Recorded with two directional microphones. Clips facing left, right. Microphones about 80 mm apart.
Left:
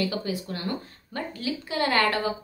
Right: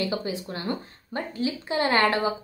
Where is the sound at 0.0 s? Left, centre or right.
Right.